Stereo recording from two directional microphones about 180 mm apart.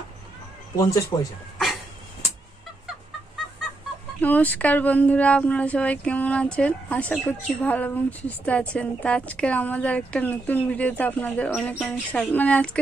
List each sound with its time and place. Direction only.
0.7 s a woman's voice: 20° left (ahead or behind)
4.2 s a woman's voice: 10° left (ahead or behind)